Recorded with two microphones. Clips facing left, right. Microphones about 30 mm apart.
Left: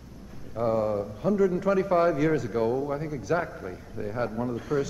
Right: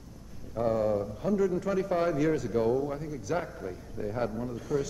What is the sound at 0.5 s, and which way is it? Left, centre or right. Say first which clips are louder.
A man's voice: left 2 dB; centre.